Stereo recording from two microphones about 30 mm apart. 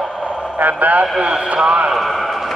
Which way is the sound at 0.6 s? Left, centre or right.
Right.